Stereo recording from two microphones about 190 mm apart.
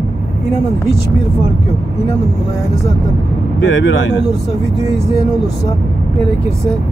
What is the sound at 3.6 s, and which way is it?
Speech, 80° left.